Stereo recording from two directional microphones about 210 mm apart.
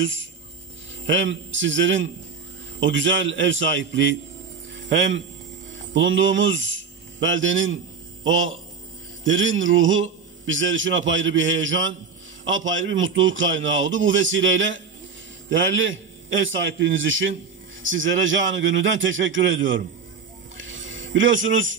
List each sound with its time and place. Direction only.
0.0 s a man's voice: 65° right (ahead or behind)
20.5 s music: 65° right (ahead or behind)